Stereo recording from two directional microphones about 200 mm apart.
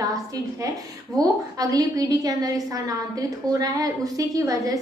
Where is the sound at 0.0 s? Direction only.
15° right (ahead or behind).